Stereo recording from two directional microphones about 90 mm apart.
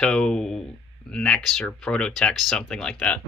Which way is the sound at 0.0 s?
10° left (ahead or behind).